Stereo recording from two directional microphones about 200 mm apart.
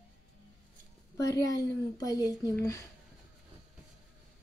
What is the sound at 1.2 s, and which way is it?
Speech, 15° left (ahead or behind).